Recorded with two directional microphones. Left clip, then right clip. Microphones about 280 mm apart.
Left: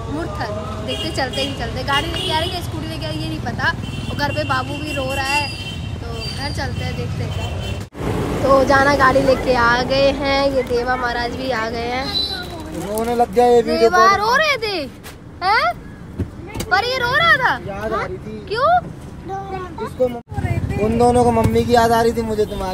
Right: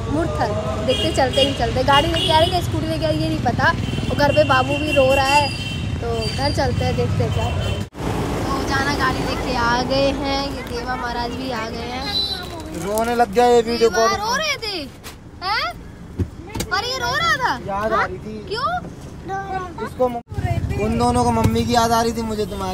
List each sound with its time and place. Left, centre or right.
0.2 s a woman's voice: centre
12.1 s vehicle: right
12.9 s a woman's voice: centre
15.4 s vehicle: centre
16.7 s a child's voice: centre
21.0 s a woman's voice: centre